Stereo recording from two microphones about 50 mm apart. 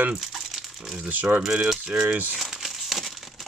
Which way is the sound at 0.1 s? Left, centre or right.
Centre.